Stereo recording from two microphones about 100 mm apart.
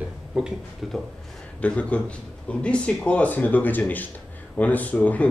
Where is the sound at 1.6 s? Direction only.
15° left (ahead or behind).